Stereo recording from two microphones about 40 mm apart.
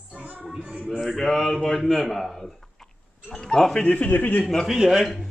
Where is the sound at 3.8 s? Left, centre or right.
Left.